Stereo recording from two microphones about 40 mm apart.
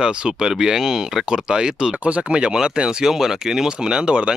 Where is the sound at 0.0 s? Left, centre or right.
Right.